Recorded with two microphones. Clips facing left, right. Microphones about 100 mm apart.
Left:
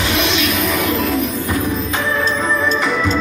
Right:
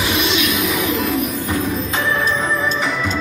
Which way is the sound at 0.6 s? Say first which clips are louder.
Left 2 dB; 5° right (ahead or behind).